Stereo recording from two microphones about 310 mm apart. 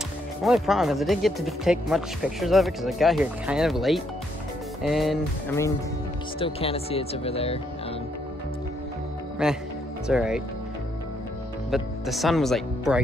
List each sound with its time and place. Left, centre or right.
0.4 s speech: centre
6.4 s speech: centre
9.4 s speech: centre
11.7 s speech: centre